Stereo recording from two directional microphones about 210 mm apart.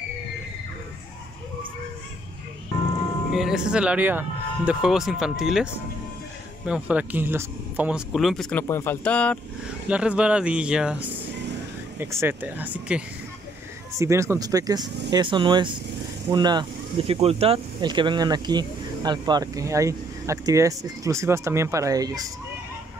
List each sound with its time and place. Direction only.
3.3 s speech: 5° right (ahead or behind)
9.8 s speech: 5° right (ahead or behind)
12.0 s speech: 10° right (ahead or behind)